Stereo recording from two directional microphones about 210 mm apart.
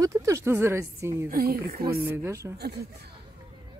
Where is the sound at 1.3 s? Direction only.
45° right (ahead or behind).